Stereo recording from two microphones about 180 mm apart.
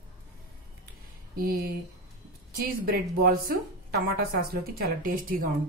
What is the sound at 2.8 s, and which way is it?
A woman's voice, 55° right (ahead or behind).